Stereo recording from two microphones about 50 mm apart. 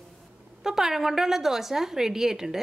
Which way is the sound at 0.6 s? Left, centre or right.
Centre.